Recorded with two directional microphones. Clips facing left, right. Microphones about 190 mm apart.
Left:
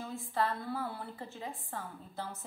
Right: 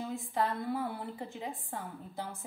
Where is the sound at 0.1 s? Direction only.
15° right (ahead or behind).